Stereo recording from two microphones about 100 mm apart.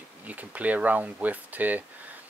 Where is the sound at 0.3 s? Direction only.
15° right (ahead or behind).